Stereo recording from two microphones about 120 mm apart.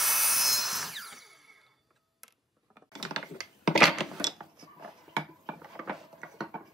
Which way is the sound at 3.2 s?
5° right (ahead or behind).